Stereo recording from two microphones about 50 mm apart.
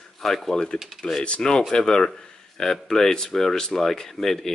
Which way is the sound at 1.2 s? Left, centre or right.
Centre.